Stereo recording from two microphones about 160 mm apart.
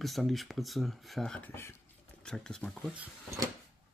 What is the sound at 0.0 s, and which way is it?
Speech, centre (ahead or behind).